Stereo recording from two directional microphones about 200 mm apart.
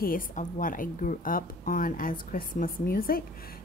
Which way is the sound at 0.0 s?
45° left (ahead or behind).